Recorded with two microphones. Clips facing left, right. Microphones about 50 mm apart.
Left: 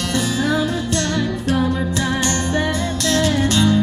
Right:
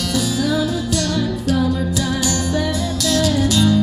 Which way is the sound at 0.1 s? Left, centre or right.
Left.